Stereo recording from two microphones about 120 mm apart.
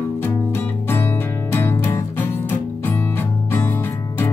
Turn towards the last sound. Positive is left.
turn(degrees=15)  # may be behind; listen again after turning